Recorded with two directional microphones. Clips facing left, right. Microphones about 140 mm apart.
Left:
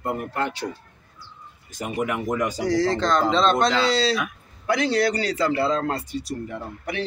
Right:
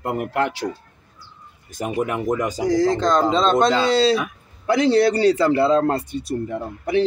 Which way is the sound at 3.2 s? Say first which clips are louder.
Right 3 dB; 20° right (ahead or behind).